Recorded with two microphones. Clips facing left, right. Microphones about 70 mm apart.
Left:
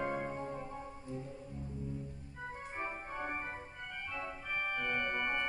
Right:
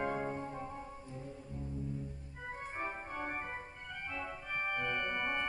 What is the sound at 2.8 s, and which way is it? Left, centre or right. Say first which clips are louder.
Organ: left 1 dB; centre.